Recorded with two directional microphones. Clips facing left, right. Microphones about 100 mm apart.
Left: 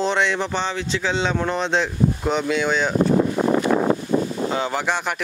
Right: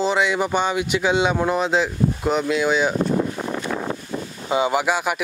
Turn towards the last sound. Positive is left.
turn(degrees=-5)  # may be behind; listen again after turning